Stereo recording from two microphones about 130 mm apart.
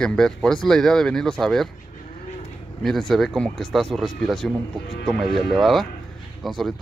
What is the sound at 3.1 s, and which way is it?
A man's voice, centre (ahead or behind).